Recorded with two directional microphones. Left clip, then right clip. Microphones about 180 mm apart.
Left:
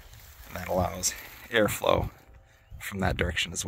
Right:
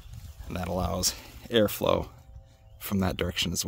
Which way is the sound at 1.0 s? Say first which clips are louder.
Right 2 dB; 45° right (ahead or behind).